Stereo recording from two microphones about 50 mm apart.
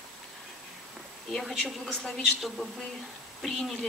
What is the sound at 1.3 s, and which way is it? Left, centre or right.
A woman's voice, centre.